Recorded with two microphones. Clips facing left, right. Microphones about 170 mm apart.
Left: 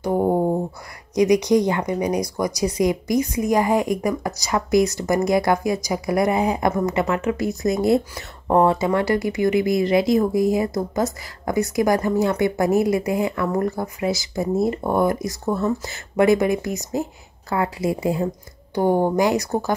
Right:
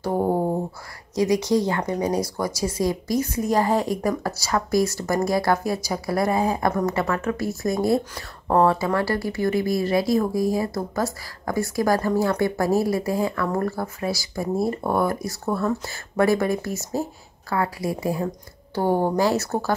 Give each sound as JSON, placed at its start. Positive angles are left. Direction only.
{"t": 0.0, "sound": "speech", "side_deg": 15}